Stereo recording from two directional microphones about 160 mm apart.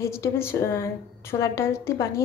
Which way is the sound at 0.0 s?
15° left (ahead or behind).